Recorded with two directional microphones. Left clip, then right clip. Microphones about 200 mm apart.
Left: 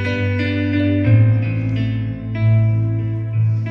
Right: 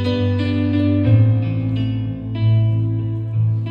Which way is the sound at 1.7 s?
35° right (ahead or behind).